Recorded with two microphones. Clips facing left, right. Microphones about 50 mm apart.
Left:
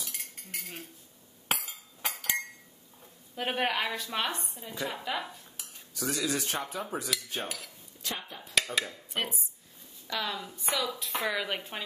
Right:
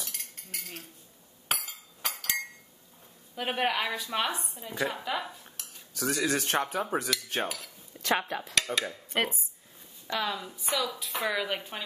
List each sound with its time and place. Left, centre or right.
0.1 s cutlery: centre
1.5 s chink: centre
3.3 s a woman's voice: centre
5.9 s speech: right
7.4 s a woman's voice: centre
8.0 s speech: right
9.1 s speech: right
10.0 s a woman's voice: centre